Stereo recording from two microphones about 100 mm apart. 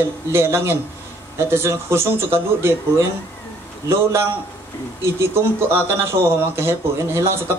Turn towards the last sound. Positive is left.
turn(degrees=-25)  # may be behind; listen again after turning